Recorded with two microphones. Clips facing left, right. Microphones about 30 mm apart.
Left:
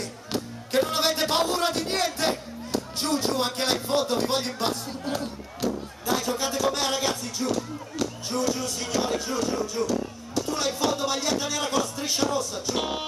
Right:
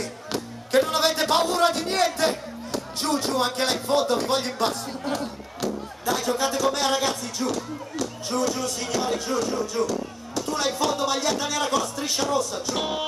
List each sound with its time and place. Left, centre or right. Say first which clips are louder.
0.3 s a man's voice: right 4 dB; centre
9.8 s speech: right 1 dB; centre